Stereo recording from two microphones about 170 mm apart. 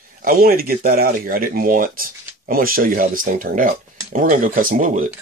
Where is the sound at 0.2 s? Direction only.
55° right (ahead or behind).